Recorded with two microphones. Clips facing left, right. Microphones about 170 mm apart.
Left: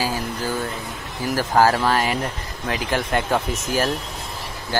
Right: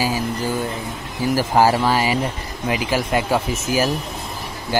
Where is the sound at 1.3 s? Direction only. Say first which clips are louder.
Right 1 dB; 10° right (ahead or behind).